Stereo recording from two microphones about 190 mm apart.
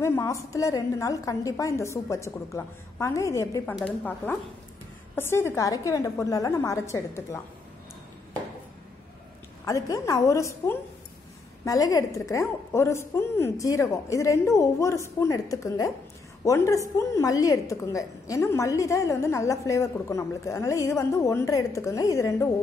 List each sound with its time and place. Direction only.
0.0 s a woman's voice: 15° left (ahead or behind)
9.7 s a woman's voice: 15° left (ahead or behind)